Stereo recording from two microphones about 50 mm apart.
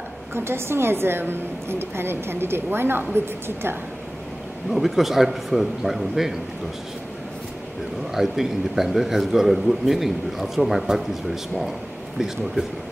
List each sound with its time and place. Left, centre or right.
0.3 s a woman's voice: right
4.6 s a man's voice: centre
8.1 s a man's voice: centre